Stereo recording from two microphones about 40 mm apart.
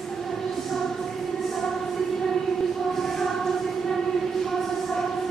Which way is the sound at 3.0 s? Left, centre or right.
Centre.